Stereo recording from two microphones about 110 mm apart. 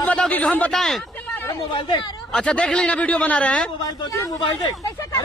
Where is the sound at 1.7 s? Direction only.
45° left (ahead or behind).